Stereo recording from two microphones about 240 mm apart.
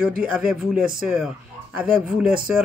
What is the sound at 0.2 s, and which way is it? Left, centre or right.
Speech, centre.